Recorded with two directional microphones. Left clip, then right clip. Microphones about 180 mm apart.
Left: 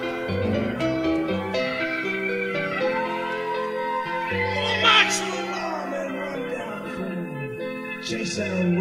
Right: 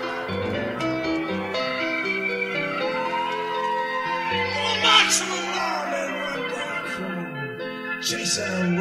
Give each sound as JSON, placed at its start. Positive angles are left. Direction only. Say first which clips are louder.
{"t": 0.5, "sound": "music", "louder": "left 2 dB", "side_deg": 35}
{"t": 4.3, "sound": "music", "louder": "left 1 dB", "side_deg": 0}